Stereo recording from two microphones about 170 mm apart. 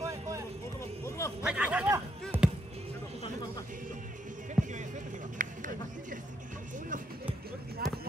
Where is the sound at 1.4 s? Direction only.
5° right (ahead or behind).